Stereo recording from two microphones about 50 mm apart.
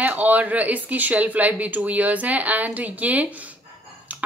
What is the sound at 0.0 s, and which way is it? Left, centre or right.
Speech, right.